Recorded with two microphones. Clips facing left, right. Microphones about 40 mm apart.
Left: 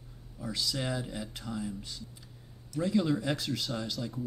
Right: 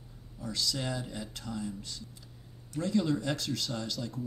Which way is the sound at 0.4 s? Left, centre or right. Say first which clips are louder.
Even; centre.